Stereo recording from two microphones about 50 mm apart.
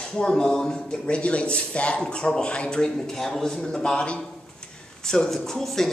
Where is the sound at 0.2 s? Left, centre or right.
Centre.